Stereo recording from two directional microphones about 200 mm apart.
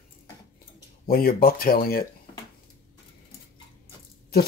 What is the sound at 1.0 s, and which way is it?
Speech, 45° left (ahead or behind).